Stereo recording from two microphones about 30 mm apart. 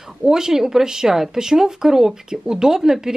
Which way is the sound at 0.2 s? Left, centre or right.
Right.